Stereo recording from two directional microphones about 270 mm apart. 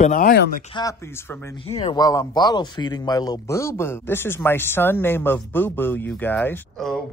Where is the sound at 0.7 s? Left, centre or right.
Centre.